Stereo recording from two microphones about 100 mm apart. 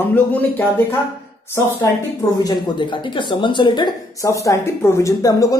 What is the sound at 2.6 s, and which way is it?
A man's voice, 50° left (ahead or behind).